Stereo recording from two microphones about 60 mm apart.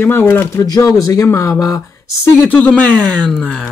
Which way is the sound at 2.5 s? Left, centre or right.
Left.